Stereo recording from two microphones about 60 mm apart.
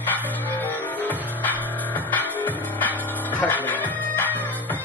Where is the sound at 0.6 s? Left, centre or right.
Left.